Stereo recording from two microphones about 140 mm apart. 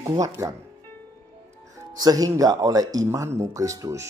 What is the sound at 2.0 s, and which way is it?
Speech, 25° right (ahead or behind).